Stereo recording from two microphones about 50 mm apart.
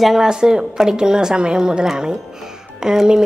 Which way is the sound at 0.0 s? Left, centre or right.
Centre.